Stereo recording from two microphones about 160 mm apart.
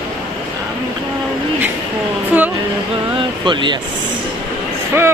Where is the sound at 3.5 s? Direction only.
30° right (ahead or behind).